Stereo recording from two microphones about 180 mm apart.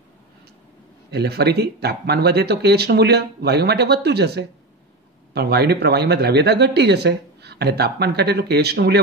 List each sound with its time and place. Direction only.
1.1 s speech: 65° right (ahead or behind)